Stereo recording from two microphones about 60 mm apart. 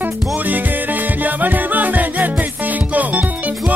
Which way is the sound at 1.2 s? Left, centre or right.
Right.